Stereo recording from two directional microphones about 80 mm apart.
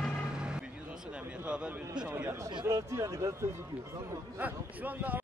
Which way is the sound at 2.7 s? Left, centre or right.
Right.